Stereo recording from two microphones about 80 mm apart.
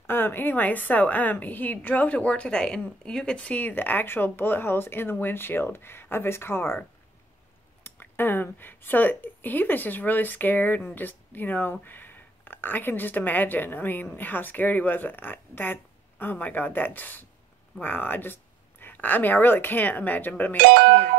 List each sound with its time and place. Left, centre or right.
0.0 s a woman's voice: left
7.8 s a woman's voice: left